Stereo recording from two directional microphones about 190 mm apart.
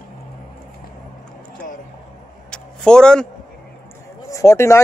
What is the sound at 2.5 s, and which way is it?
Vehicle, 5° left (ahead or behind).